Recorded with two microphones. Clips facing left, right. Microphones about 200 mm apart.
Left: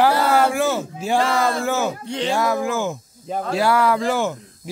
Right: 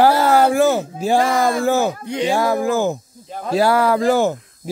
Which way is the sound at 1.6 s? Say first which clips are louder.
Right 5 dB; 35° right (ahead or behind).